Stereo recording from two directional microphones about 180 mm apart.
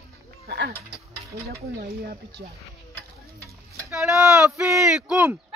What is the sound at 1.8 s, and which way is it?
Speech, 55° right (ahead or behind).